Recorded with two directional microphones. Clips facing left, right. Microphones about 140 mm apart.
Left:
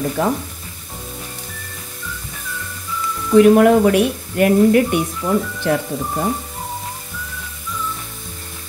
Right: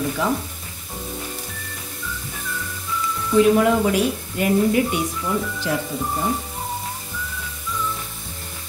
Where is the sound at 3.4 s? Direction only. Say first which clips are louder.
Left 6 dB; 60° left (ahead or behind).